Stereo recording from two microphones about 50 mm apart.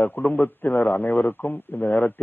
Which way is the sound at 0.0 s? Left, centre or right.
Left.